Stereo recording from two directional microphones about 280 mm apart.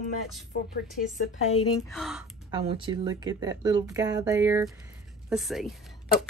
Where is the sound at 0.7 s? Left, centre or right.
Left.